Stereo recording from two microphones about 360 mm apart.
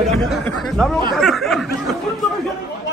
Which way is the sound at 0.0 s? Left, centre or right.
Centre.